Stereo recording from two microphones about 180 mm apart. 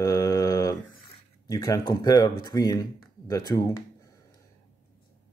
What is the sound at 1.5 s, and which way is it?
Speech, 20° left (ahead or behind).